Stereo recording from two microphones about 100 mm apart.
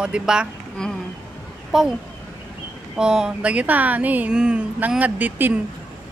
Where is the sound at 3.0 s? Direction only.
5° right (ahead or behind).